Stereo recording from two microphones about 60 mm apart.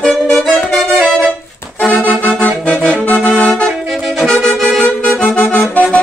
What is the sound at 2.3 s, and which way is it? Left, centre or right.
Music, centre.